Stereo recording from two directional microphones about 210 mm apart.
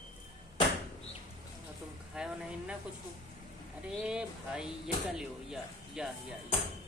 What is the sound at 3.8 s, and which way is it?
Speech, 5° right (ahead or behind).